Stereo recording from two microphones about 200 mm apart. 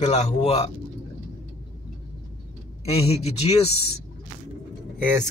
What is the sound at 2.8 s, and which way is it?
Speech, 30° left (ahead or behind).